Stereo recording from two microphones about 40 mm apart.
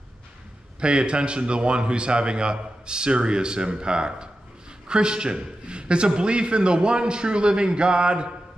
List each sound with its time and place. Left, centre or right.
0.7 s a man's voice: right